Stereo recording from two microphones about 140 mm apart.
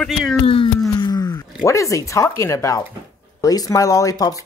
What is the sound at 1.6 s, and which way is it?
Speech, 20° left (ahead or behind).